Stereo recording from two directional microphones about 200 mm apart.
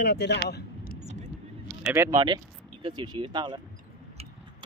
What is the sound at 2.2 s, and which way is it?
Speech, 25° right (ahead or behind).